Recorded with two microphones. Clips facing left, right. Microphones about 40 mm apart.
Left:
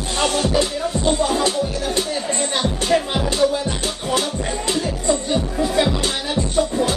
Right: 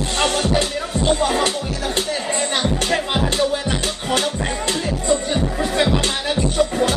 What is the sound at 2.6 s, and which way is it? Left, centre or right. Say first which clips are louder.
Music: left 1 dB; centre.